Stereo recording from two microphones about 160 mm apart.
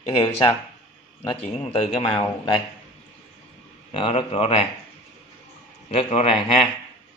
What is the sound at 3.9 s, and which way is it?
Speech, 35° left (ahead or behind).